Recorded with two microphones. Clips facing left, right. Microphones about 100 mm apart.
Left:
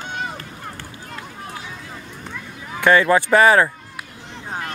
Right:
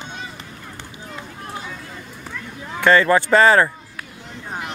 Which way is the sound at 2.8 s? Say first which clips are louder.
Even; 10° left (ahead or behind).